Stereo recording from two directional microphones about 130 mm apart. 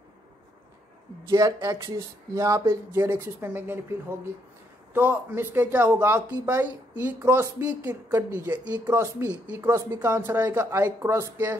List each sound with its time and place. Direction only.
1.3 s speech: 30° right (ahead or behind); by 3.8 s 10° right (ahead or behind)
4.9 s speech: 15° right (ahead or behind)